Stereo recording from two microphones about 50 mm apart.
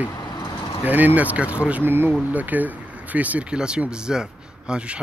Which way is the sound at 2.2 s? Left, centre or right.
Right.